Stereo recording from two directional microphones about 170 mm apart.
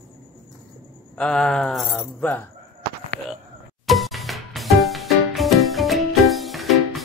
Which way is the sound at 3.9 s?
Centre (ahead or behind).